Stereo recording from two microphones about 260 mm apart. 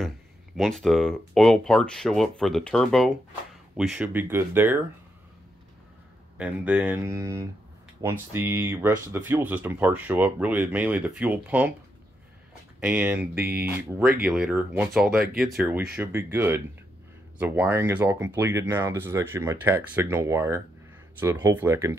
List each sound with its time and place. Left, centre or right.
0.6 s speech: centre
6.3 s speech: centre
12.8 s speech: centre
13.4 s speech: right
14.2 s speech: centre